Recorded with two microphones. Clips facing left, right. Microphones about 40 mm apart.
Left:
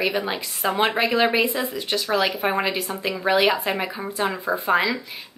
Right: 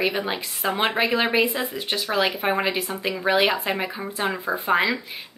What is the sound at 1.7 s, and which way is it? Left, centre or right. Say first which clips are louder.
Speech: left 2 dB; centre.